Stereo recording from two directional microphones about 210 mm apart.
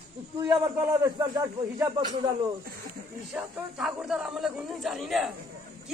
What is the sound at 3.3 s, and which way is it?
A man's voice, 5° right (ahead or behind).